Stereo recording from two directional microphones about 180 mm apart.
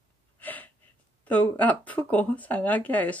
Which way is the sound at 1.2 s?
10° left (ahead or behind).